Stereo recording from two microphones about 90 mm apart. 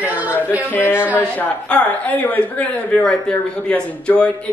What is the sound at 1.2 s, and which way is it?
Speech, 15° left (ahead or behind).